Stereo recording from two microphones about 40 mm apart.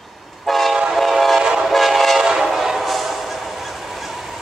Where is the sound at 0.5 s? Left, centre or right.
Centre.